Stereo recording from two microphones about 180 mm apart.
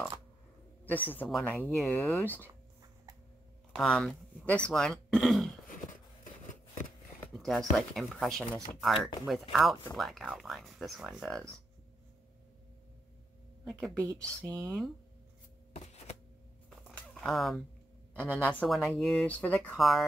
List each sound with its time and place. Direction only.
0.8 s speech: 10° left (ahead or behind)
3.7 s speech: 5° left (ahead or behind)
7.3 s speech: centre (ahead or behind)
13.7 s speech: centre (ahead or behind)
14.0 s speech: 15° right (ahead or behind)
15.7 s a sound: 35° left (ahead or behind)
16.9 s a sound: 5° left (ahead or behind)
18.2 s speech: 5° left (ahead or behind)